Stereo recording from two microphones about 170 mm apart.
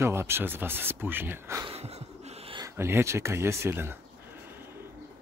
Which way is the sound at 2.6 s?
15° right (ahead or behind).